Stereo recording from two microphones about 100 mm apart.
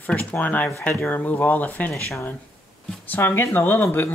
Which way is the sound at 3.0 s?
20° left (ahead or behind).